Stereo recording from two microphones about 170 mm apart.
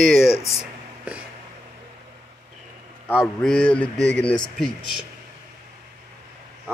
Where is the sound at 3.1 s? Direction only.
5° left (ahead or behind).